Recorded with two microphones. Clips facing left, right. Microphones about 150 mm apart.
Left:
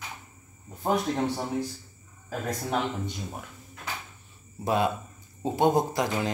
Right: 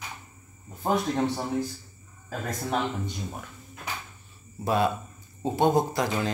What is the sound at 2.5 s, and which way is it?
Speech, 15° left (ahead or behind).